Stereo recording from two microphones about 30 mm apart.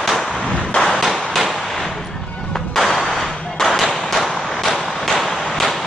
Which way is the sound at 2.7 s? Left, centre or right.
Centre.